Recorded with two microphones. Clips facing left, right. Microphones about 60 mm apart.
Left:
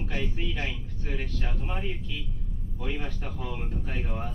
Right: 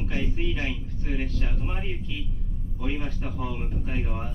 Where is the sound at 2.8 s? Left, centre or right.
Centre.